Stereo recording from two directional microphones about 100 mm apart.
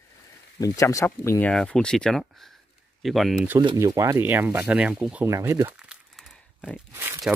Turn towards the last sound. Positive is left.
turn(degrees=-25)  # may be behind; listen again after turning